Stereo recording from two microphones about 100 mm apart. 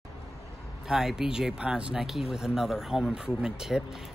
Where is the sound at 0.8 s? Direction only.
5° right (ahead or behind).